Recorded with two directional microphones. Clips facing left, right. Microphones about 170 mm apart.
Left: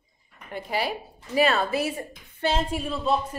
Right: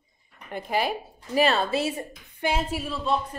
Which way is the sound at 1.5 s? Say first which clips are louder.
Even; 25° right (ahead or behind).